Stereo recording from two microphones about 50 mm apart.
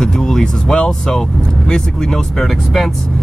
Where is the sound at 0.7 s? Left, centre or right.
Centre.